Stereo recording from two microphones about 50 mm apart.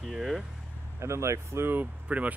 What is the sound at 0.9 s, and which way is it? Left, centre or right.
Speech, right.